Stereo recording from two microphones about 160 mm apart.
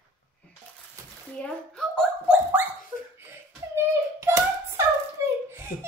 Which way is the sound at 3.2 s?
15° right (ahead or behind).